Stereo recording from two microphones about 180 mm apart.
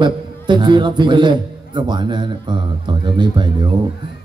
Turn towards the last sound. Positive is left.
turn(degrees=-25)  # may be behind; listen again after turning